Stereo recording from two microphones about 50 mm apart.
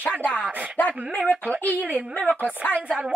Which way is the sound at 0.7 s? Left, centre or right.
Left.